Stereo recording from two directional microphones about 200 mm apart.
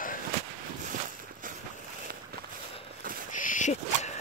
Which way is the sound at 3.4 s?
40° left (ahead or behind).